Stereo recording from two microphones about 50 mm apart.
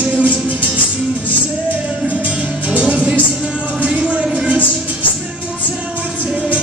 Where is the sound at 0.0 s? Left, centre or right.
Right.